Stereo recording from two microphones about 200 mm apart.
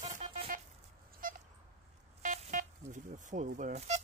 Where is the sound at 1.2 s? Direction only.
45° right (ahead or behind).